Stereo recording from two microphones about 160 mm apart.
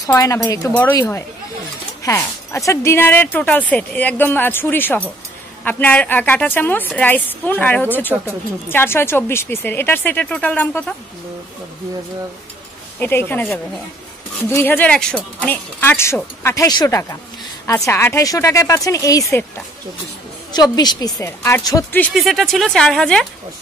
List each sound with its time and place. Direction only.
0.0 s speech: 20° left (ahead or behind)
13.0 s speech: 15° left (ahead or behind)
20.7 s speech: 25° left (ahead or behind)
21.4 s speech: 10° left (ahead or behind)
22.1 s speech: centre (ahead or behind)